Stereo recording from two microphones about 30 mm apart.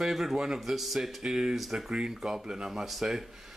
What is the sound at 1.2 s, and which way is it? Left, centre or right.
Speech, right.